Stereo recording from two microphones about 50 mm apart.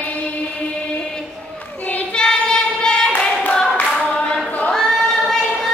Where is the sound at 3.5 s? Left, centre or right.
Centre.